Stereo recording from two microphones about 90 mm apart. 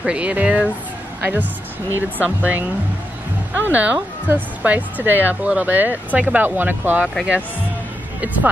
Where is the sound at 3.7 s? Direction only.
15° right (ahead or behind).